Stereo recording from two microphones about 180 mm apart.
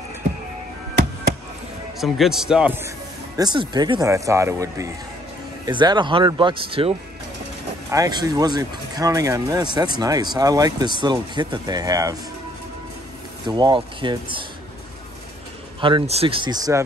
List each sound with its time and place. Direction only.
2.0 s speech: centre (ahead or behind)
3.3 s speech: 25° right (ahead or behind)
7.9 s speech: 20° right (ahead or behind)
13.5 s speech: 25° right (ahead or behind)
15.8 s speech: 30° right (ahead or behind)